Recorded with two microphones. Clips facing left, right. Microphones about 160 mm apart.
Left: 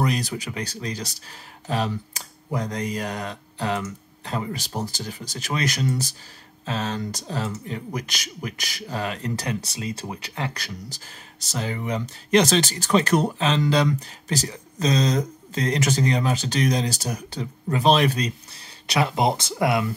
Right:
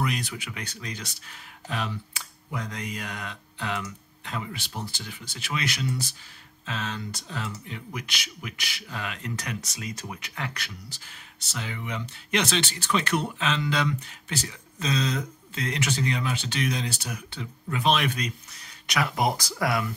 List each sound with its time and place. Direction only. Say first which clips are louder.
0.0 s speech: left 5 dB; 35° left (ahead or behind)